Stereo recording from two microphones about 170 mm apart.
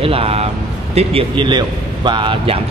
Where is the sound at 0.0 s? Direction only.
35° right (ahead or behind).